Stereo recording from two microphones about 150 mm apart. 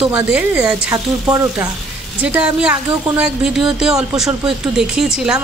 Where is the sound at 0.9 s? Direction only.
20° right (ahead or behind).